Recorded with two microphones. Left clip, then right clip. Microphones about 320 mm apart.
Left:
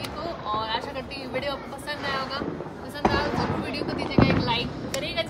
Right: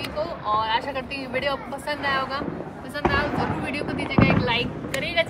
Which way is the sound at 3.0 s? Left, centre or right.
Left.